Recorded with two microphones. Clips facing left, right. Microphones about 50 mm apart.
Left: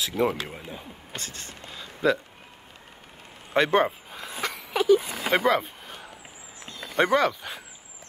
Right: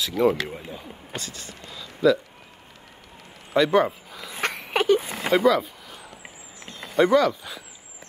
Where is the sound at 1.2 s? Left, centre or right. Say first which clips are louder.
Right 1 dB; left.